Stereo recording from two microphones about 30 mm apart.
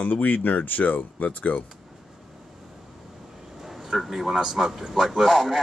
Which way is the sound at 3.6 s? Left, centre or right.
Centre.